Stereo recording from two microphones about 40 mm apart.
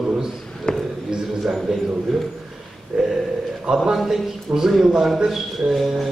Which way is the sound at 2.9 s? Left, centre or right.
Right.